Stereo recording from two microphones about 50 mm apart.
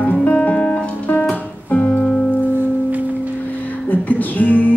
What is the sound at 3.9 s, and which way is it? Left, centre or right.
Music, left.